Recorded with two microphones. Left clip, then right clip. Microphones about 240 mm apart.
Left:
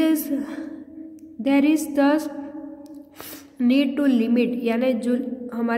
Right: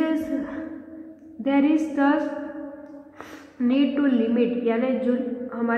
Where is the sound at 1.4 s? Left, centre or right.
Left.